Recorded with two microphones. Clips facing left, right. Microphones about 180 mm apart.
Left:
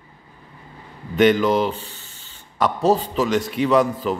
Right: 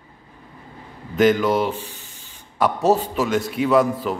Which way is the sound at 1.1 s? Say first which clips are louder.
Left 1 dB; centre (ahead or behind).